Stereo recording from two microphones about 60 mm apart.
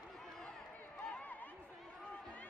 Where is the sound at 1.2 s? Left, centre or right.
Left.